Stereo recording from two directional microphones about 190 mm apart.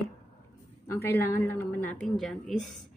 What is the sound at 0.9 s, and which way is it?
A woman's voice, 10° left (ahead or behind).